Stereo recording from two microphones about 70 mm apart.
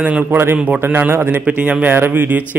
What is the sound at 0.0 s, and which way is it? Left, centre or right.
A man's voice, right.